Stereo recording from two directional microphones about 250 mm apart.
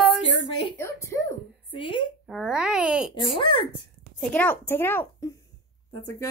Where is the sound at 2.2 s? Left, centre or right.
Centre.